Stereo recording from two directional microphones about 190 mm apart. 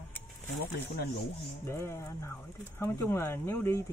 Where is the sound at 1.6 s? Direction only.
15° left (ahead or behind).